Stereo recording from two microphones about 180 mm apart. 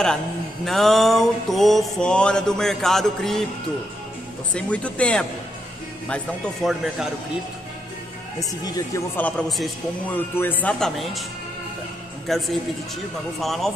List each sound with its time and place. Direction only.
0.7 s mantra: centre (ahead or behind)
4.6 s speech: 5° left (ahead or behind)
6.0 s mantra: 5° left (ahead or behind)
8.4 s speech: 20° left (ahead or behind)
9.5 s mantra: centre (ahead or behind)
10.1 s speech: 10° left (ahead or behind)
12.3 s mantra: centre (ahead or behind)